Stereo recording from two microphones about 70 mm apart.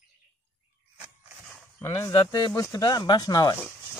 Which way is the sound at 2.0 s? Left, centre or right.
Left.